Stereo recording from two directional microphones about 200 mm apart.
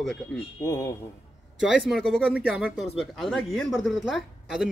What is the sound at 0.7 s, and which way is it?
Speech, 15° left (ahead or behind).